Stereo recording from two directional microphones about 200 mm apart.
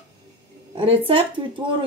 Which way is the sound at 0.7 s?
25° right (ahead or behind).